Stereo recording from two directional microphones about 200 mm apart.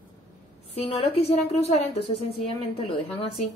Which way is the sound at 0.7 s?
30° left (ahead or behind).